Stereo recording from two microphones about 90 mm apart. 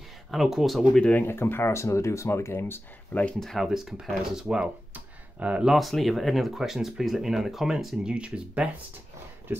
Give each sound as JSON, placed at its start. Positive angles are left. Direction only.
{"t": 0.3, "sound": "speech", "side_deg": -5}
{"t": 0.9, "sound": "speech", "side_deg": 10}
{"t": 1.2, "sound": "speech", "side_deg": 25}
{"t": 3.3, "sound": "speech", "side_deg": 5}
{"t": 4.9, "sound": "a sound", "side_deg": -15}
{"t": 5.7, "sound": "speech", "side_deg": 0}